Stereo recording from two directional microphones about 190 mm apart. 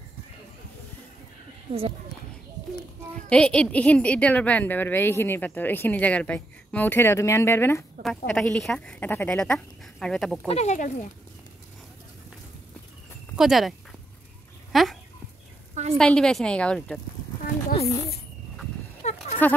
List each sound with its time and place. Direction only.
1.7 s speech: 30° right (ahead or behind)
3.3 s a woman's voice: 5° left (ahead or behind)
10.5 s speech: 35° left (ahead or behind)
13.4 s speech: centre (ahead or behind)
14.7 s dog: centre (ahead or behind)
15.7 s a sound: 35° right (ahead or behind)
16.0 s speech: 5° left (ahead or behind)
17.7 s speech: 30° left (ahead or behind)
19.0 s sheep: 35° left (ahead or behind)